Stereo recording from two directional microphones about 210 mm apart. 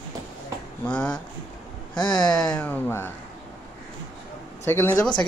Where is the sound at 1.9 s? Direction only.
20° left (ahead or behind).